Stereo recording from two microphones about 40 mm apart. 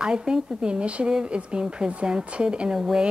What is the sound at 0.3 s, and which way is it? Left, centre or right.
Speech, right.